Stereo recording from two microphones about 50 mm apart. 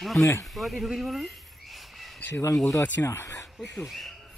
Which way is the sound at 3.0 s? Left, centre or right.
Left.